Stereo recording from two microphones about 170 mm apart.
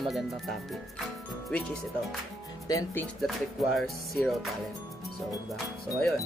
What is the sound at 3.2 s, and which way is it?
Speech, centre (ahead or behind).